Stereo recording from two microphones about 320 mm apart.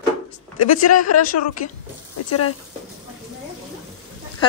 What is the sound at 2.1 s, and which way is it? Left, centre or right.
Speech, left.